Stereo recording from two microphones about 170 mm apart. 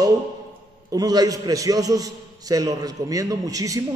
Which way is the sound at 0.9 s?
20° right (ahead or behind).